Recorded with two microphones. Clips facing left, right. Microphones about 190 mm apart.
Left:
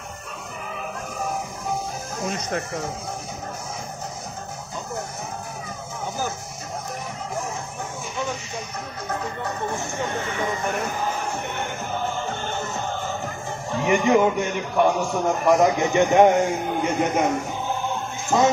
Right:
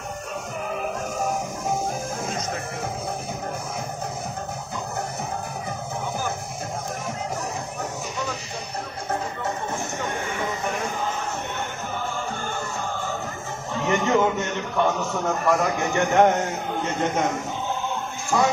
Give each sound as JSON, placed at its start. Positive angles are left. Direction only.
{"t": 12.0, "sound": "music", "side_deg": 20}
{"t": 13.7, "sound": "a man's voice", "side_deg": 15}
{"t": 18.3, "sound": "speech", "side_deg": 20}